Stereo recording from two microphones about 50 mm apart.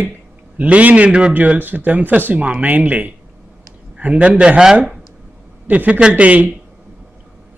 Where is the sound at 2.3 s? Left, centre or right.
Right.